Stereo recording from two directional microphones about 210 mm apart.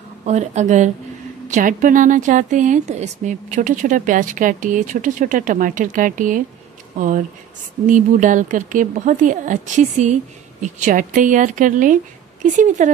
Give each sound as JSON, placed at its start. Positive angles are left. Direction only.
{"t": 0.2, "sound": "a woman's voice", "side_deg": -35}
{"t": 7.8, "sound": "a woman's voice", "side_deg": -35}